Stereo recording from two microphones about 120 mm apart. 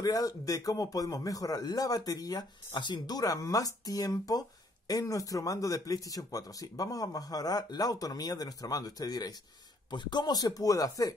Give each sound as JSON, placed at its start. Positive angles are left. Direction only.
{"t": 0.0, "sound": "speech", "side_deg": 30}